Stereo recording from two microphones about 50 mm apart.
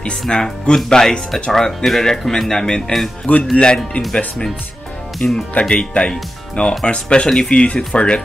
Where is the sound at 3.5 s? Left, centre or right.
Left.